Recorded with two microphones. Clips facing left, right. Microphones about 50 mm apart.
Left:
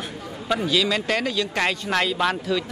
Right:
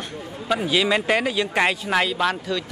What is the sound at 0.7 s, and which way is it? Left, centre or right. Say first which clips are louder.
Speech: right 4 dB; right.